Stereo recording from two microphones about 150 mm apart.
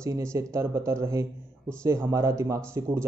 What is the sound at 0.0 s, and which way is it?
A man's voice, 20° right (ahead or behind).